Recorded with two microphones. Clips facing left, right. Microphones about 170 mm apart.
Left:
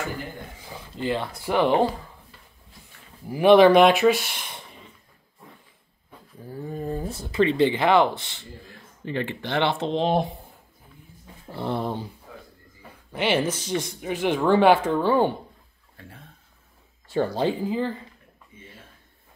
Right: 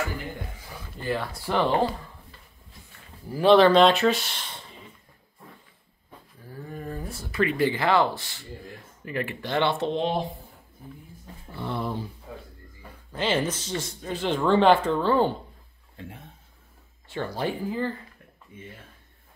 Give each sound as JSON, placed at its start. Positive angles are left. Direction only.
{"t": 0.7, "sound": "speech", "side_deg": 20}
{"t": 3.3, "sound": "speech", "side_deg": 15}
{"t": 6.7, "sound": "speech", "side_deg": 25}
{"t": 11.5, "sound": "speech", "side_deg": 50}
{"t": 13.1, "sound": "speech", "side_deg": 10}
{"t": 16.0, "sound": "speech", "side_deg": -20}
{"t": 17.3, "sound": "speech", "side_deg": 25}